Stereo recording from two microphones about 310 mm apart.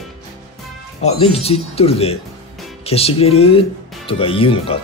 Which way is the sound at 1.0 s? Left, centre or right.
Centre.